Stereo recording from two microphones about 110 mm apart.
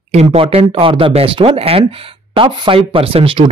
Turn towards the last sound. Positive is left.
turn(degrees=-50)  # may be behind; listen again after turning